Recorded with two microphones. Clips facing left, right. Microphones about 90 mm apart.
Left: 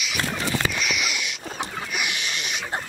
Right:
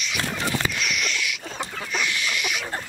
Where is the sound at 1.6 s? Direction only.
15° left (ahead or behind).